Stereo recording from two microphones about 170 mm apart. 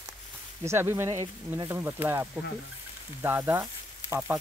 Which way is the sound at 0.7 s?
15° right (ahead or behind).